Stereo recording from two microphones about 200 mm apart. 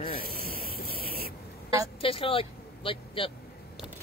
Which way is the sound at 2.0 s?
25° left (ahead or behind).